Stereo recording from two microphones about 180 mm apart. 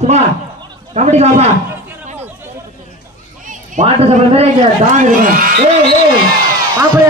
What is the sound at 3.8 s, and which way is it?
Speech, 45° right (ahead or behind).